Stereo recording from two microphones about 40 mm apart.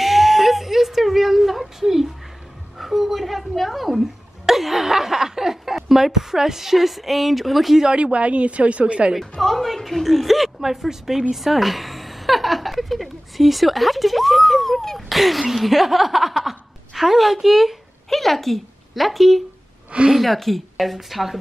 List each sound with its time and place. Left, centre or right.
0.0 s a sound: centre
7.8 s a woman's voice: right
9.4 s a woman's voice: centre